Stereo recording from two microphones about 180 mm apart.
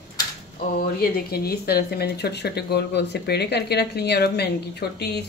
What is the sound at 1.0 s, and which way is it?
Speech, 60° left (ahead or behind).